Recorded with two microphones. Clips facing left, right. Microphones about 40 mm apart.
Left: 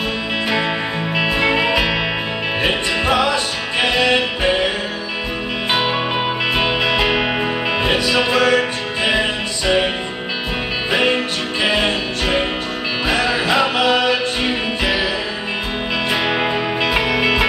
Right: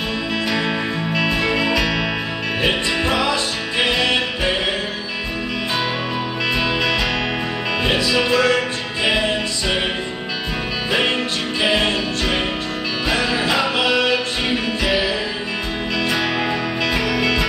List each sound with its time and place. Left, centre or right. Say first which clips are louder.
0.5 s music: left 3 dB; left
3.1 s music: left 5 dB; left
6.5 s music: left 1 dB; left
10.9 s music: left 2 dB; left
16.1 s music: left 3 dB; left